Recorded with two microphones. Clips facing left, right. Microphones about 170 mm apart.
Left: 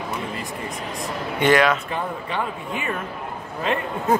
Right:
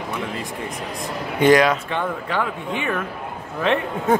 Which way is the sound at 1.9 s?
75° right (ahead or behind).